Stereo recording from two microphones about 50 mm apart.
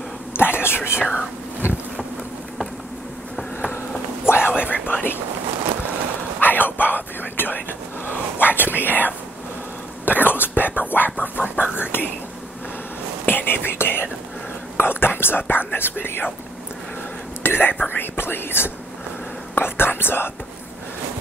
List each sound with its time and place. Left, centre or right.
0.3 s a sound: left
0.9 s speech: right
4.3 s whispering: left
4.8 s a sound: left
6.4 s whispering: left
13.2 s whispering: left
14.8 s speech: left
17.4 s speech: left
19.5 s whispering: left